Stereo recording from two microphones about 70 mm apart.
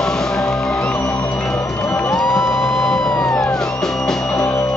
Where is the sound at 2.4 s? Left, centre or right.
Centre.